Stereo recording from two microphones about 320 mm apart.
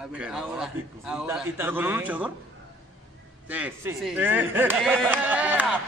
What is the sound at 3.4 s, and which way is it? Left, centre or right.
A man's voice, centre.